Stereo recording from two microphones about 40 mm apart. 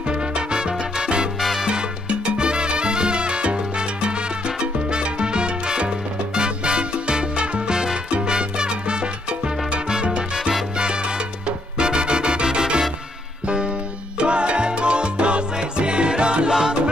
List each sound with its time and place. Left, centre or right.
0.1 s salsa music: right
1.4 s music: centre
1.7 s salsa music: right
10.8 s music: right
14.1 s salsa music: right